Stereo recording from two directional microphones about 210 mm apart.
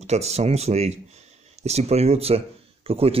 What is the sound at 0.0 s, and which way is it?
Speech, 30° right (ahead or behind).